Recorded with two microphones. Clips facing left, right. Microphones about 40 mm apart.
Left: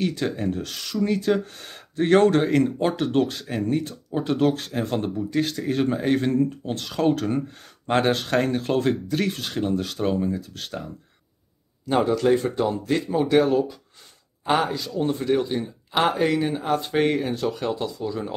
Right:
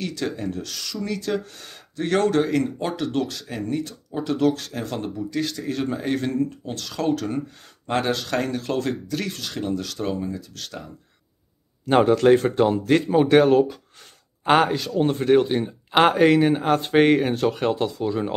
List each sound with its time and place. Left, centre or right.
0.0 s speech: left
11.9 s speech: right